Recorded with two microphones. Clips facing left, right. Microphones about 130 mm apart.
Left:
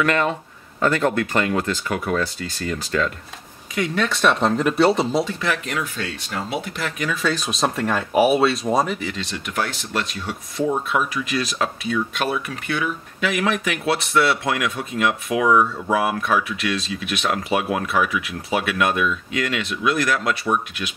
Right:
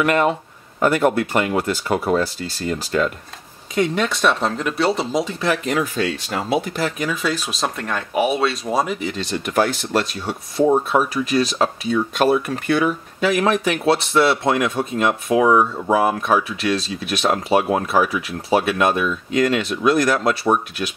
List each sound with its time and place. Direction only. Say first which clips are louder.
0.0 s a man's voice: right 3 dB; 20° right (ahead or behind)
1.9 s speech: right 4 dB; 30° right (ahead or behind)
4.0 s speech: even; 5° right (ahead or behind)
5.4 s speech: right 4 dB; 30° right (ahead or behind)
7.1 s speech: even; 5° right (ahead or behind)
9.1 s speech: right 6 dB; 40° right (ahead or behind)